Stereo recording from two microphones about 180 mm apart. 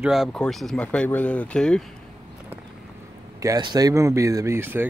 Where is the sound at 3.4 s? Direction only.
20° right (ahead or behind).